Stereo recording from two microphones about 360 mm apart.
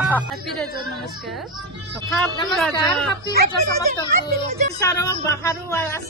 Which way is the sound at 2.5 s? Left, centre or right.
Centre.